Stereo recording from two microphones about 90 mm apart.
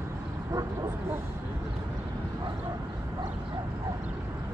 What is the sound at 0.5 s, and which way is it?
Vehicle, 40° right (ahead or behind).